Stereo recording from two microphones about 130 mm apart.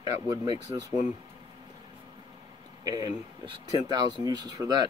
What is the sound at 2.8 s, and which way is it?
Speech, 30° right (ahead or behind).